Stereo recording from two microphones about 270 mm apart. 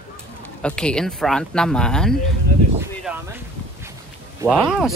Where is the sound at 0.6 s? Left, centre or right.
Centre.